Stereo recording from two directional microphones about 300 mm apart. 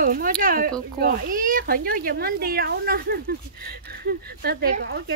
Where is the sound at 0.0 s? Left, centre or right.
Right.